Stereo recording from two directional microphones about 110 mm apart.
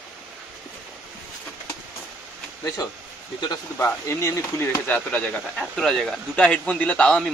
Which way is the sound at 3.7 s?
25° left (ahead or behind).